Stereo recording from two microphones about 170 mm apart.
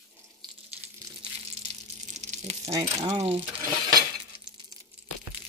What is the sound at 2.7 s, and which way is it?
Speech, 20° right (ahead or behind).